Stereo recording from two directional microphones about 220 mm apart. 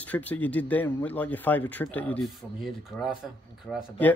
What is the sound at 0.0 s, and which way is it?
Speech, 5° left (ahead or behind).